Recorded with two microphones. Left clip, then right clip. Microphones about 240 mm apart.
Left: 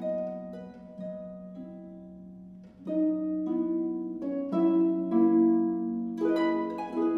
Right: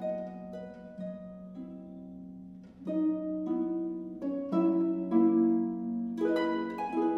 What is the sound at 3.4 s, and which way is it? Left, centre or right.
Harp, right.